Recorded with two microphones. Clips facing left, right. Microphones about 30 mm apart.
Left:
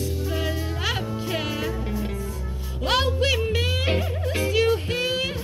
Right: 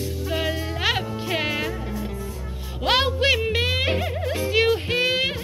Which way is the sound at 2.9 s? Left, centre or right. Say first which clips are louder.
Right 2 dB; right.